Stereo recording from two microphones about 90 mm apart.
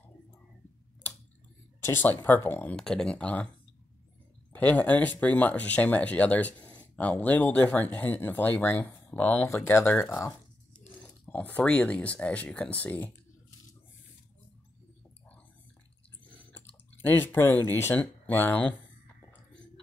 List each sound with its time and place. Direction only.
1.8 s speech: 25° left (ahead or behind)
2.7 s speech: 5° left (ahead or behind)
4.5 s speech: 20° left (ahead or behind)
17.0 s speech: 20° left (ahead or behind)